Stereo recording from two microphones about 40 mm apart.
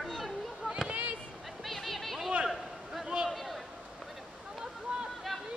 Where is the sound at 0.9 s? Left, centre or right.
Right.